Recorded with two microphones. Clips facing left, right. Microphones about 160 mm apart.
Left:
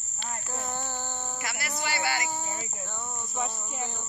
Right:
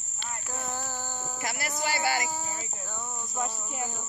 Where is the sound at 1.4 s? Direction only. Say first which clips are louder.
Right 4 dB; 40° right (ahead or behind).